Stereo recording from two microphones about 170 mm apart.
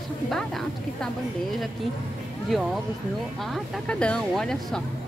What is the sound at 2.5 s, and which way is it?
A woman's voice, centre (ahead or behind).